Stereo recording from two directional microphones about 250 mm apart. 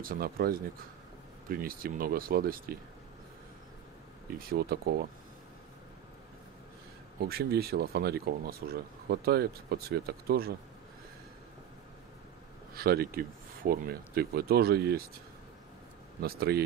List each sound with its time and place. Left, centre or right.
0.0 s speech: right
4.4 s speech: right
7.2 s speech: right
12.7 s speech: right
16.2 s speech: right